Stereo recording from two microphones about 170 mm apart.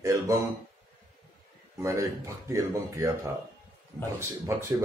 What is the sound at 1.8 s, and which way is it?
Speech, 15° right (ahead or behind).